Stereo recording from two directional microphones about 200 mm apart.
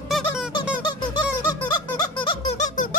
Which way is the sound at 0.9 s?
20° left (ahead or behind).